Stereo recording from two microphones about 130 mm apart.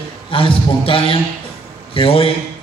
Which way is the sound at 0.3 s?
45° left (ahead or behind).